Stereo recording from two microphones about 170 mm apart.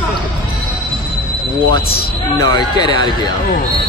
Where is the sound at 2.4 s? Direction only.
20° left (ahead or behind).